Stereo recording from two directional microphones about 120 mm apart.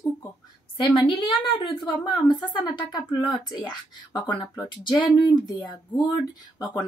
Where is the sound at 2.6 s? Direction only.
35° left (ahead or behind).